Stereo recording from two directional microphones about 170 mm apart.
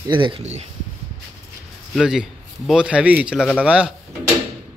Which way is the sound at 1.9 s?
5° right (ahead or behind).